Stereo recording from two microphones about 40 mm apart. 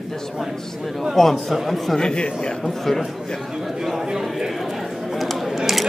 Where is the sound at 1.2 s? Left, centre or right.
Centre.